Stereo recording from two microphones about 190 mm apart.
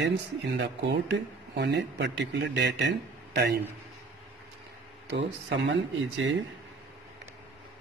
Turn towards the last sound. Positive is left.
turn(degrees=-80)